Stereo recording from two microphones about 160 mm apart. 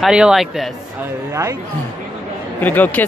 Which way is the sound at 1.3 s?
20° right (ahead or behind).